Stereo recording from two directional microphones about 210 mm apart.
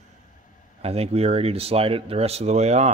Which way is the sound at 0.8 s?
30° right (ahead or behind).